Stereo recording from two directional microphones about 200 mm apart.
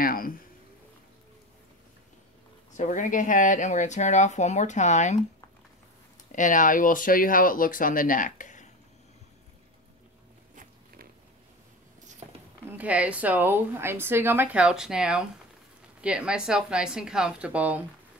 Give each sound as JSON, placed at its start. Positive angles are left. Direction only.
{"t": 0.0, "sound": "speech", "side_deg": 45}
{"t": 2.8, "sound": "speech", "side_deg": 40}
{"t": 6.3, "sound": "speech", "side_deg": 40}
{"t": 12.7, "sound": "a woman's voice", "side_deg": -5}